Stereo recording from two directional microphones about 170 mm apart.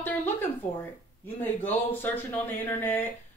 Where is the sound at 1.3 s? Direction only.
10° left (ahead or behind).